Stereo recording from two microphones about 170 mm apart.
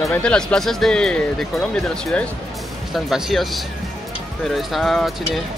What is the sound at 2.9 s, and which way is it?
Speech, centre (ahead or behind).